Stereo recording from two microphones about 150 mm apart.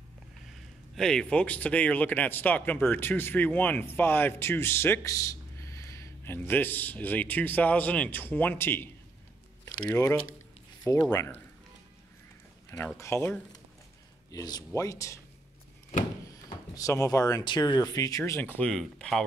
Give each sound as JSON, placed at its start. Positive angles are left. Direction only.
{"t": 0.9, "sound": "speech", "side_deg": 5}
{"t": 12.9, "sound": "speech", "side_deg": 20}
{"t": 16.3, "sound": "speech", "side_deg": 20}